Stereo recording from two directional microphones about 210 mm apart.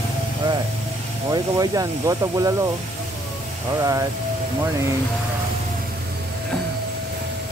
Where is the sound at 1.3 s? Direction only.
15° right (ahead or behind).